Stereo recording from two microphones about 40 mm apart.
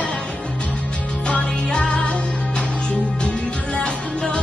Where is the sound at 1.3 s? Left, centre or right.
Left.